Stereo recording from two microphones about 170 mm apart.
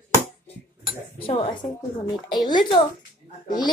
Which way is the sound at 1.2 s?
35° left (ahead or behind).